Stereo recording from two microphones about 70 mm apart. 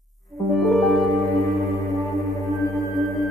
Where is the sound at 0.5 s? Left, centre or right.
Centre.